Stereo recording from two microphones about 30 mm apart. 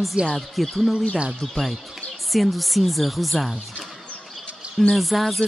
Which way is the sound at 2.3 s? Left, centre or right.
Centre.